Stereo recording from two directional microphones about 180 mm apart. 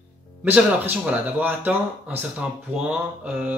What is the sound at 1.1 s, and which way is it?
Speech, 10° right (ahead or behind).